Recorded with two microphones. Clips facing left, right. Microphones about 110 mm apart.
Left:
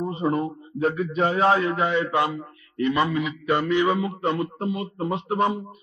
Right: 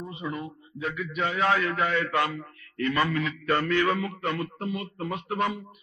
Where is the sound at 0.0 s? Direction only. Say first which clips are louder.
Left 10 dB; 40° left (ahead or behind).